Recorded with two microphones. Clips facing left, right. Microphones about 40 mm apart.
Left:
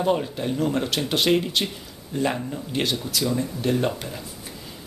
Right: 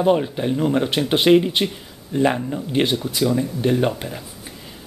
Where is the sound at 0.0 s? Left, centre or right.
Centre.